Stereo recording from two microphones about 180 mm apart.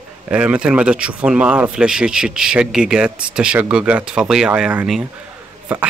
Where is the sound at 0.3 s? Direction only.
5° right (ahead or behind).